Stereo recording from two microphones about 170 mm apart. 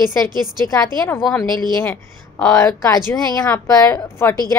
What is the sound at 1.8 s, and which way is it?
A woman's voice, 10° left (ahead or behind).